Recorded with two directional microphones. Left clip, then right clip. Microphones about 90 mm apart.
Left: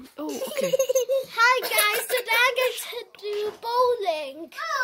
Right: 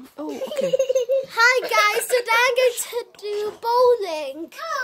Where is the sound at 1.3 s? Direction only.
45° right (ahead or behind).